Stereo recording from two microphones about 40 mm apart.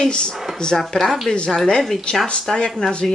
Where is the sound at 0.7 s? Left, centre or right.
Centre.